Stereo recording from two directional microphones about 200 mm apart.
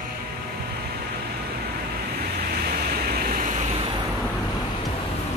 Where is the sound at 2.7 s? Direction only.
50° right (ahead or behind).